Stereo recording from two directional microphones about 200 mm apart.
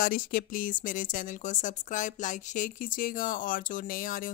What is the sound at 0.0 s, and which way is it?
Speech, 45° left (ahead or behind).